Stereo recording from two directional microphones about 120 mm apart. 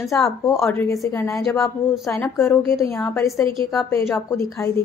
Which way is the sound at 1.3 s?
Centre (ahead or behind).